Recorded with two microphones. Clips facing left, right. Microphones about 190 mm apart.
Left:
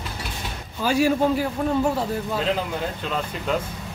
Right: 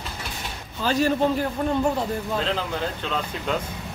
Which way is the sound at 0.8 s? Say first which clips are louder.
Left 1 dB; 10° left (ahead or behind).